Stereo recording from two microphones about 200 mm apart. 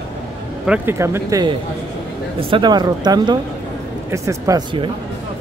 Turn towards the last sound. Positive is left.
turn(degrees=-20)  # may be behind; listen again after turning